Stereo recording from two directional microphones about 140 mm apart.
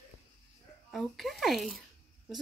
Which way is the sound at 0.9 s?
Centre (ahead or behind).